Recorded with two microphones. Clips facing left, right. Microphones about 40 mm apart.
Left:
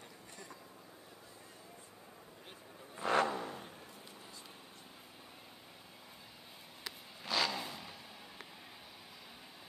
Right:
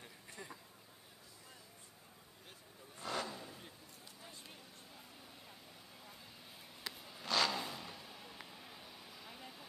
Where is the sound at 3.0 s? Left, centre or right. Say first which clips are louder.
Left 10 dB; left.